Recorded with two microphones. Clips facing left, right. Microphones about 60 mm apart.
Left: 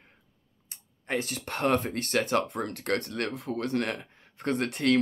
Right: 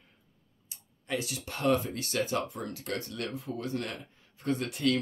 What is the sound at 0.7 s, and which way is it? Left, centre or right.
Speech, left.